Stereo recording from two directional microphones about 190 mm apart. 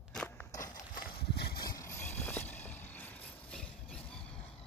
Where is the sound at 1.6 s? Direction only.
15° left (ahead or behind).